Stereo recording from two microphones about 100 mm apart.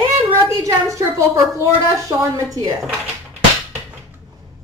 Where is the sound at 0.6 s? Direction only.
30° right (ahead or behind).